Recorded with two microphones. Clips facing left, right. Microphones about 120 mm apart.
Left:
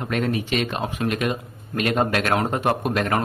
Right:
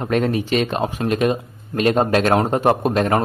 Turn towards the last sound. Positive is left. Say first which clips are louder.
# right 5 dB
turn(degrees=-30)  # may be behind; listen again after turning